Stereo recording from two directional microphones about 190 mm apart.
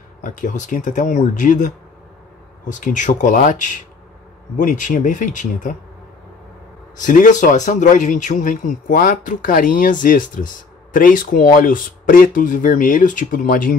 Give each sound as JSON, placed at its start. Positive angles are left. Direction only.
{"t": 0.2, "sound": "a man's voice", "side_deg": 40}
{"t": 2.7, "sound": "a man's voice", "side_deg": 40}
{"t": 7.0, "sound": "a man's voice", "side_deg": 40}